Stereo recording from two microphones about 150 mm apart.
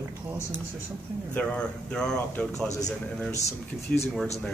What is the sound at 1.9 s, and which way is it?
Speech, 5° left (ahead or behind).